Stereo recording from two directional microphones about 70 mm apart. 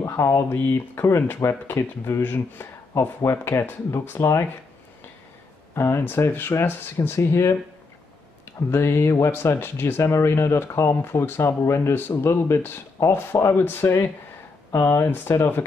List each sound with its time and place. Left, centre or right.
0.0 s speech: left
5.8 s speech: left
8.5 s speech: left